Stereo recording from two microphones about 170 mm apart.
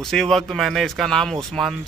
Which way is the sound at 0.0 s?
Centre (ahead or behind).